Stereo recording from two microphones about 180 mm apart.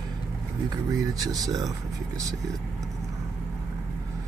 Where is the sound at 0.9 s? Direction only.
20° right (ahead or behind).